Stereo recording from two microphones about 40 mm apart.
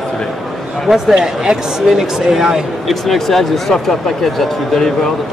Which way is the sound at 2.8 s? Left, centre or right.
Centre.